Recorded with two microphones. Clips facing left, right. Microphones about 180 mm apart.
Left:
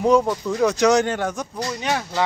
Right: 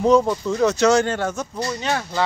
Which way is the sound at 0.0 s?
10° left (ahead or behind).